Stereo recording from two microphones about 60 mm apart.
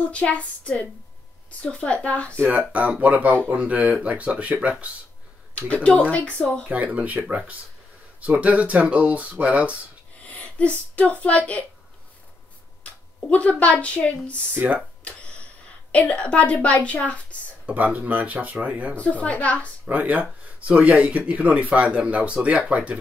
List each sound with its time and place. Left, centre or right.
0.1 s a woman's voice: left
2.4 s speech: right
5.5 s a woman's voice: left
6.7 s speech: right
10.2 s speech: left
12.8 s speech: left
14.5 s speech: right
15.9 s a woman's voice: left
17.6 s speech: right
18.9 s a woman's voice: left
19.9 s speech: right